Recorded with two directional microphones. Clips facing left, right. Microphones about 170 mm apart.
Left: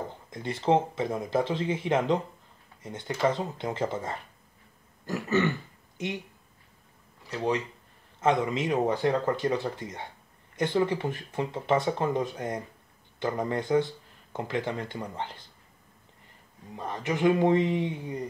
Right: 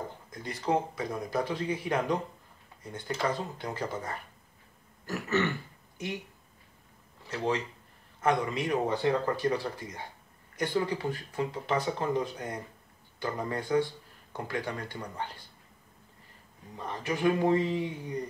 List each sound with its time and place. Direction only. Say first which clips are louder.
0.3 s speech: left 5 dB; 25° left (ahead or behind)
5.0 s throat clearing: left 3 dB; 20° left (ahead or behind)
7.2 s speech: left 2 dB; 20° left (ahead or behind)
16.7 s speech: left 3 dB; 20° left (ahead or behind)